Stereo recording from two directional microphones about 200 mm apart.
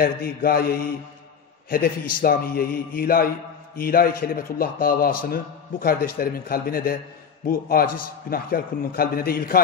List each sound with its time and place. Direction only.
0.0 s a man's voice: 45° left (ahead or behind)